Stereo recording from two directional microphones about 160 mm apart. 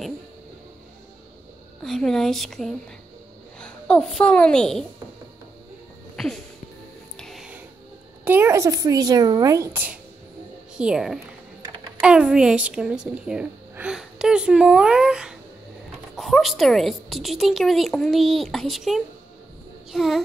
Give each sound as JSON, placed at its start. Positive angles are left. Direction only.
{"t": 1.8, "sound": "a woman's voice", "side_deg": 0}
{"t": 7.2, "sound": "music", "side_deg": 0}
{"t": 8.3, "sound": "a woman's voice", "side_deg": -15}